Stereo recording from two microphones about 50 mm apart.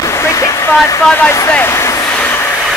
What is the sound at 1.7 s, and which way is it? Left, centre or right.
Vehicle, left.